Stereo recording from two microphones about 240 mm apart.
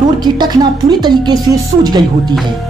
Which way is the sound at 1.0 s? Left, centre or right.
Centre.